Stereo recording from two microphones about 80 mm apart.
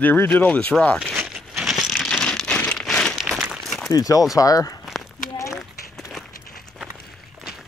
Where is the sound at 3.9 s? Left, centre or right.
Left.